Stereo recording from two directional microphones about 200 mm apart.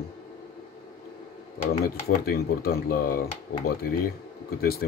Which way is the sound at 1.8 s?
50° left (ahead or behind).